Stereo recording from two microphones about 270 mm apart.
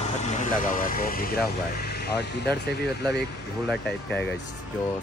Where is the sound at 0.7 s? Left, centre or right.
Left.